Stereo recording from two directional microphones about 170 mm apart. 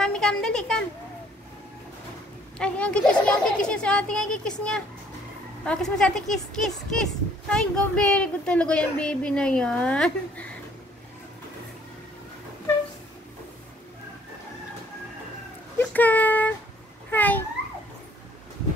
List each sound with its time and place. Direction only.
0.0 s a woman's voice: 5° left (ahead or behind)
2.6 s a child's voice: 5° left (ahead or behind)
15.8 s a sound: 10° left (ahead or behind)